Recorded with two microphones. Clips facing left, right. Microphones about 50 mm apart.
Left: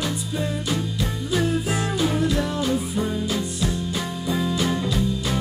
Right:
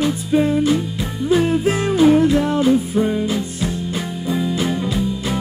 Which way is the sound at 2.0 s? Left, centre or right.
Right.